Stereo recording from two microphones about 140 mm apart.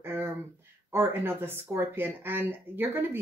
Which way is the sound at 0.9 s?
15° right (ahead or behind).